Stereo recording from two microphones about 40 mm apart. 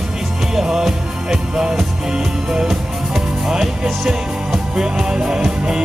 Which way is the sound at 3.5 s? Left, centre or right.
Centre.